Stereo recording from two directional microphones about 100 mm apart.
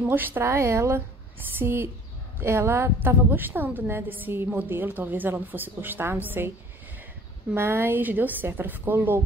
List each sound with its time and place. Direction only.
0.0 s a woman's voice: 20° right (ahead or behind)
7.5 s a woman's voice: 25° right (ahead or behind)